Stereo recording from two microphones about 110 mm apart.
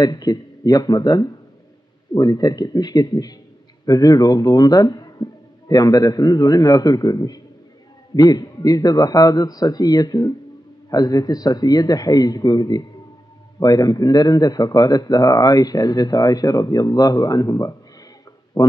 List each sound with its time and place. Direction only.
0.0 s speech: 35° left (ahead or behind)